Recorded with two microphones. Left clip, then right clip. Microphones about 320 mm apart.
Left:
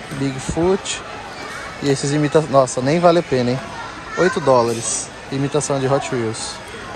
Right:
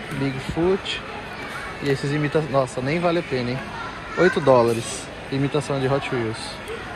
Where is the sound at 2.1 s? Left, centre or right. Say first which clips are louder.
Left 9 dB; centre.